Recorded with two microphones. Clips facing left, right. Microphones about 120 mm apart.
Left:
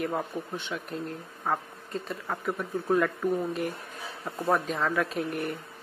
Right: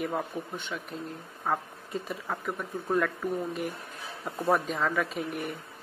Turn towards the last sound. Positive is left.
turn(degrees=0)  # may be behind; listen again after turning